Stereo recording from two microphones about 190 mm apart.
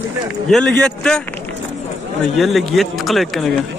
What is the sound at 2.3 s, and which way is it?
Speech, centre (ahead or behind).